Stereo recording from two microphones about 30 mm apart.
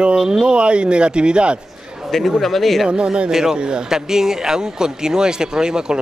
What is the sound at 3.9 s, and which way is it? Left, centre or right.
Speech, centre.